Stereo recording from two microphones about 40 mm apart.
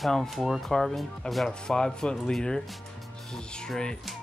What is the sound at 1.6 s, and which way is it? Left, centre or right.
Speech, centre.